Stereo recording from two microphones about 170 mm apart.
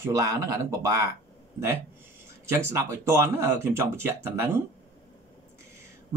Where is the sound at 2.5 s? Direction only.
15° right (ahead or behind).